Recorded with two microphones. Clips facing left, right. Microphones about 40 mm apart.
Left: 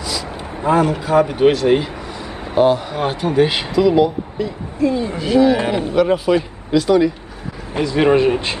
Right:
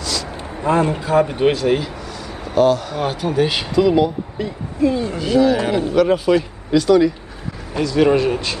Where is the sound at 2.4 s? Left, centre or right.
Left.